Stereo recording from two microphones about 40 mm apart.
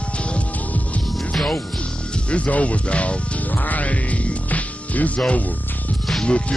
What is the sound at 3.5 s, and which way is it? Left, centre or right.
Music, left.